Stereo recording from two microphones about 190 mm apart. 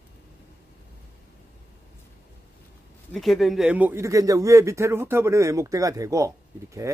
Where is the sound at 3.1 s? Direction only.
Centre (ahead or behind).